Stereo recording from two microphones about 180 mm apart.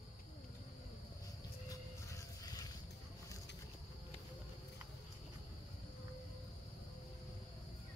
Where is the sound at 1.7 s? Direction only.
20° left (ahead or behind).